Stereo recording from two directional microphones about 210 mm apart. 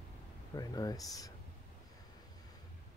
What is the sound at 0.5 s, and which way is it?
Speech, 15° left (ahead or behind).